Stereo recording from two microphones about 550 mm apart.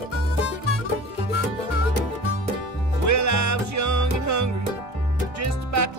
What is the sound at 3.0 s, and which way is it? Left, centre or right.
Music, right.